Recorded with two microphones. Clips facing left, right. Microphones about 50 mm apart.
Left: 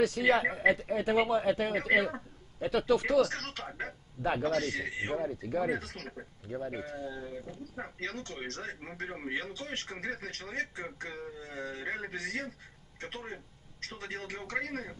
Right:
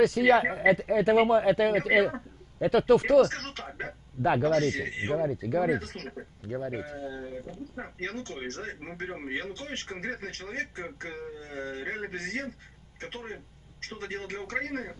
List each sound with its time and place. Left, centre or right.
0.0 s a man's voice: right
3.6 s a sound: right
4.2 s a man's voice: right
8.0 s a man's voice: right